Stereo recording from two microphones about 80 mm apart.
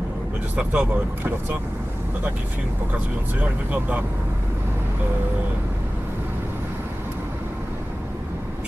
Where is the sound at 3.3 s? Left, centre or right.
Centre.